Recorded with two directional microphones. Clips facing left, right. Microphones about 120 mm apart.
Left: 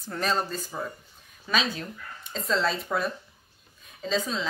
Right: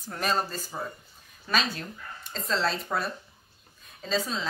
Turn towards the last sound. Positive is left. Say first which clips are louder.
# left 1 dB
turn(degrees=0)  # may be behind; listen again after turning